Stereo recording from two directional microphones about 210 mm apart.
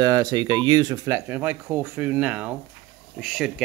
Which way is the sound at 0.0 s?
20° right (ahead or behind).